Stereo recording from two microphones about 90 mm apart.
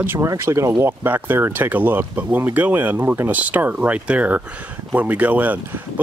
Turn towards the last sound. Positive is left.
turn(degrees=-20)  # may be behind; listen again after turning